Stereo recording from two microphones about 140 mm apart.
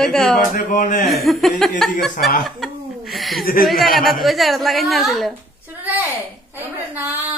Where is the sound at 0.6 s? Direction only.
70° left (ahead or behind).